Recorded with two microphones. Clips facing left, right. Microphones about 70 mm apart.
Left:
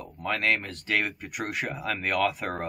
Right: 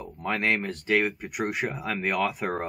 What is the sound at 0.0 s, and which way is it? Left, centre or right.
Speech, right.